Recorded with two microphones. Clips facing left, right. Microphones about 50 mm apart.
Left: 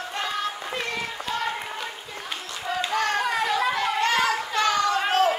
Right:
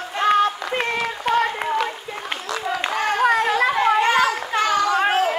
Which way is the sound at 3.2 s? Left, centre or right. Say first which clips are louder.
Right 6 dB; right.